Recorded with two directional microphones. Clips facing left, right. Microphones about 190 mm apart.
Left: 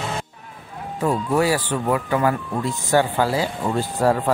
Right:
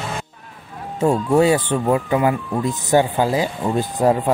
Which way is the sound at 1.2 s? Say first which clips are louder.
Right 5 dB; 25° right (ahead or behind).